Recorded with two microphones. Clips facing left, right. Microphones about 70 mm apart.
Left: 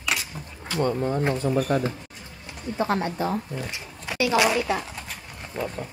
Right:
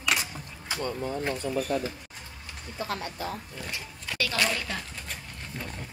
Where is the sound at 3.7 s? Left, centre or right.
Centre.